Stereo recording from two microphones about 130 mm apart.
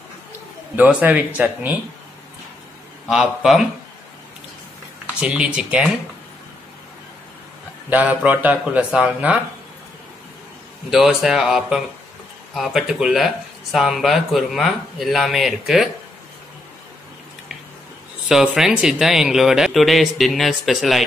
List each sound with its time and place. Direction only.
0.7 s speech: 10° right (ahead or behind)
3.1 s speech: centre (ahead or behind)
5.2 s speech: 10° right (ahead or behind)
7.9 s speech: 10° right (ahead or behind)
10.9 s speech: 5° right (ahead or behind)
18.3 s speech: 5° right (ahead or behind)